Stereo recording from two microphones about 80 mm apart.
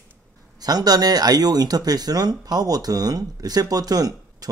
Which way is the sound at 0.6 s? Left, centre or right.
Right.